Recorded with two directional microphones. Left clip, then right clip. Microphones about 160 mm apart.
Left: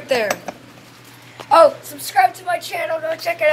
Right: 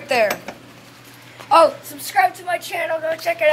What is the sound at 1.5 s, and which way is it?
A woman's voice, 20° left (ahead or behind).